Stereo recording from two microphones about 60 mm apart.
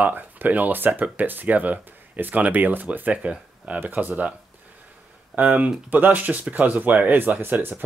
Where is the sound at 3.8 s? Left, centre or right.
Right.